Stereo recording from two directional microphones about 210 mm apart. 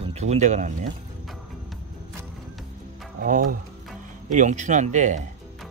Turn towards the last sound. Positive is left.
turn(degrees=-35)  # may be behind; listen again after turning